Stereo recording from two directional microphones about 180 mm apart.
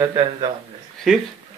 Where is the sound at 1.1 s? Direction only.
Centre (ahead or behind).